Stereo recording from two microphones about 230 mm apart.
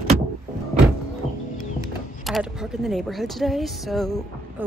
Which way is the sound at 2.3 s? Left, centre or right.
Centre.